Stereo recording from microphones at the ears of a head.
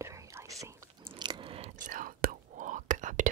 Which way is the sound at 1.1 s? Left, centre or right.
Right.